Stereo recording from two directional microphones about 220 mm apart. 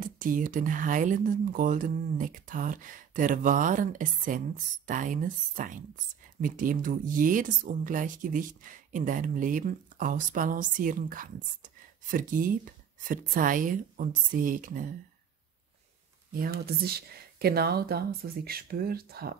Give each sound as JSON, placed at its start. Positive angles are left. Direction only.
{"t": 0.0, "sound": "speech", "side_deg": -40}
{"t": 16.3, "sound": "speech", "side_deg": -45}